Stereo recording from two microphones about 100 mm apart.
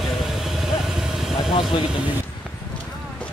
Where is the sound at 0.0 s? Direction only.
Centre (ahead or behind).